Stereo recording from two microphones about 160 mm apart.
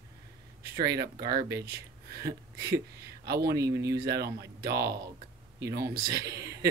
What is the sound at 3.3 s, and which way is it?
Speech, 80° right.